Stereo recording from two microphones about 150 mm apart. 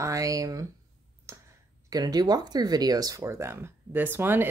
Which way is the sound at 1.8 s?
25° right (ahead or behind).